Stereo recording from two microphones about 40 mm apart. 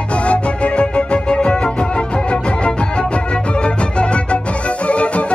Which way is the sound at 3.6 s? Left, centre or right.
Left.